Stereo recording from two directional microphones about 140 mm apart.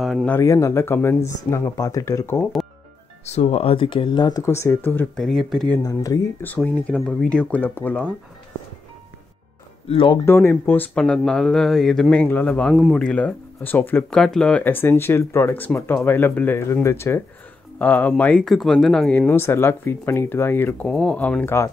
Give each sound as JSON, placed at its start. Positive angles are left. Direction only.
{"t": 0.0, "sound": "speech", "side_deg": 0}
{"t": 0.3, "sound": "speech", "side_deg": 20}
{"t": 3.3, "sound": "speech", "side_deg": 50}
{"t": 5.1, "sound": "speech", "side_deg": 0}
{"t": 5.8, "sound": "speech", "side_deg": 25}
{"t": 6.4, "sound": "speech", "side_deg": 10}
{"t": 9.8, "sound": "speech", "side_deg": 35}
{"t": 10.2, "sound": "speech", "side_deg": 15}
{"t": 12.7, "sound": "speech", "side_deg": -5}
{"t": 13.0, "sound": "speech", "side_deg": 10}
{"t": 20.9, "sound": "speech", "side_deg": 5}